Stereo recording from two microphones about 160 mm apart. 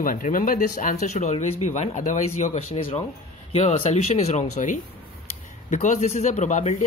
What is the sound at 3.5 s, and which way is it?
Speech, 40° left (ahead or behind).